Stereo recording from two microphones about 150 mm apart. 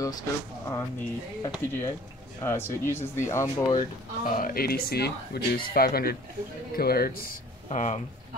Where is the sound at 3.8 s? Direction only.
65° left (ahead or behind); by 7.4 s 80° left.